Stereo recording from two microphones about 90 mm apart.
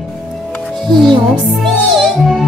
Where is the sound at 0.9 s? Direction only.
60° right (ahead or behind).